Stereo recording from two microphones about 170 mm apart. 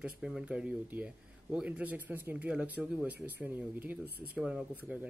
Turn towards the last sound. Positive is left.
turn(degrees=-10)  # may be behind; listen again after turning